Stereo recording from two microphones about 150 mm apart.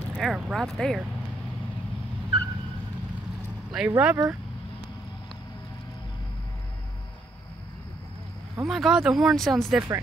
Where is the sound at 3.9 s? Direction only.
10° right (ahead or behind).